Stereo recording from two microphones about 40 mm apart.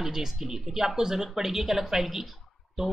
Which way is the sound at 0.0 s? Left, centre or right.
Centre.